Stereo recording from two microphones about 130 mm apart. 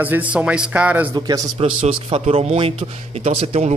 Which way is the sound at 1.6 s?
50° right (ahead or behind).